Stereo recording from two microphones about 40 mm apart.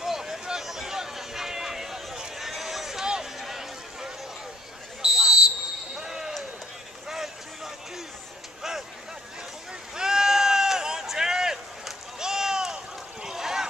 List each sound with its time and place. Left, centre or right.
0.0 s a sound: centre
3.3 s run: centre
5.0 s basketball bounce: centre
7.1 s vehicle: centre
9.9 s sheep: centre
12.2 s a sound: centre